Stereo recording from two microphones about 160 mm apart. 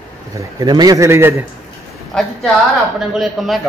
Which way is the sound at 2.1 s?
5° left (ahead or behind).